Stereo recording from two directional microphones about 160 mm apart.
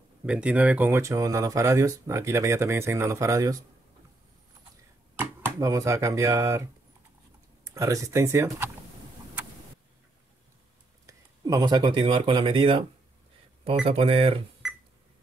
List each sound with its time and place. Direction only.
0.3 s speech: 10° right (ahead or behind)
5.1 s speech: 15° right (ahead or behind)
11.1 s speech: 20° right (ahead or behind)
13.8 s speech: 35° right (ahead or behind)